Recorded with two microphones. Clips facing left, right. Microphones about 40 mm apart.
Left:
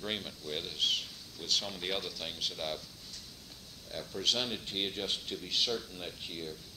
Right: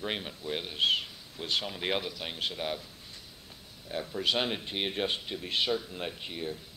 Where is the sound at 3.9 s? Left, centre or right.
Right.